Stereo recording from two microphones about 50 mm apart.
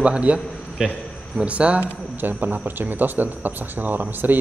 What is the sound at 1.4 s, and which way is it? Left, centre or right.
Speech, right.